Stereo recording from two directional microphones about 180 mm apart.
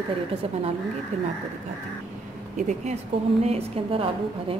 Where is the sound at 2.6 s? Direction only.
45° right (ahead or behind).